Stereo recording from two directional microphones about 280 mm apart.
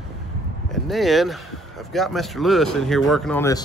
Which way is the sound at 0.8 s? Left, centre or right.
Centre.